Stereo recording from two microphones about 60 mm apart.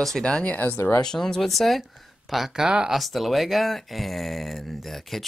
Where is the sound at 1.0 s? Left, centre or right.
Centre.